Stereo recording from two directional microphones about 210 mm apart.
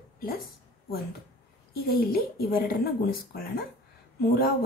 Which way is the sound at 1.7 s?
50° left (ahead or behind).